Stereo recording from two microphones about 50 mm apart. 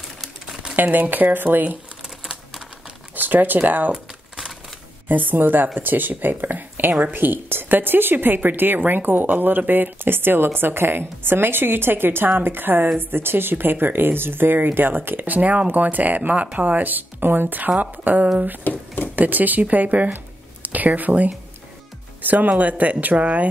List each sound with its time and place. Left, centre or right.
0.7 s speech: right
3.2 s speech: right
5.0 s a woman's voice: right
18.6 s a sound: left
19.1 s speech: right